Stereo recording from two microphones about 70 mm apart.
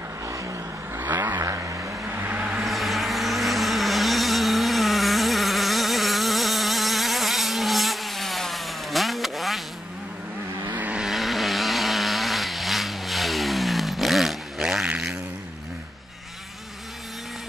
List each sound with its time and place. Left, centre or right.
0.9 s vehicle: right
1.4 s vehicle: right
1.9 s vehicle: right
2.6 s vehicle: centre
10.7 s vehicle: right
11.0 s vehicle: centre